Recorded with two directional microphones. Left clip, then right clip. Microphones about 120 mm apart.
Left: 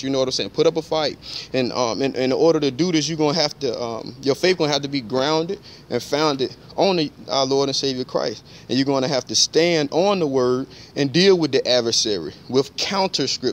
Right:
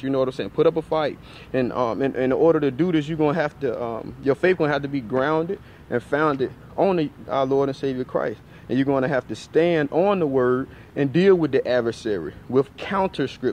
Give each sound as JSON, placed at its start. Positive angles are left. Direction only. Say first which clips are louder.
{"t": 0.0, "sound": "speech", "louder": "left 2 dB", "side_deg": 40}
{"t": 1.5, "sound": "speech", "louder": "left 1 dB", "side_deg": 50}
{"t": 12.4, "sound": "speech", "louder": "left 2 dB", "side_deg": 40}